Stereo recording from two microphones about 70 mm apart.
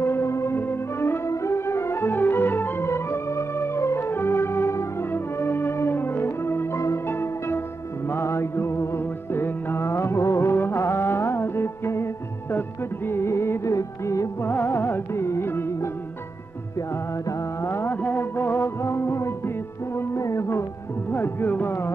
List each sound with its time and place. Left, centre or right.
0.0 s music: left
14.4 s music: left
17.6 s music: left
18.6 s music: left
21.1 s music: left